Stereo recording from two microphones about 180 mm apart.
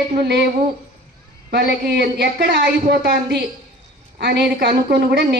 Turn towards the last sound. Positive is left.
turn(degrees=-65)  # may be behind; listen again after turning